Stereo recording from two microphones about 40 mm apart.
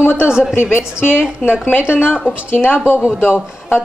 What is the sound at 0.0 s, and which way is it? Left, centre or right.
Speech, left.